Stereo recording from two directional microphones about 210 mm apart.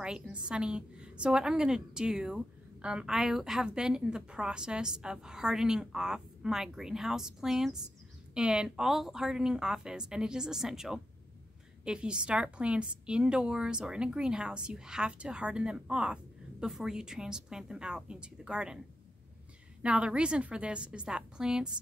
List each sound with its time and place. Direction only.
0.0 s a woman's voice: 5° right (ahead or behind)
19.8 s a woman's voice: 5° right (ahead or behind)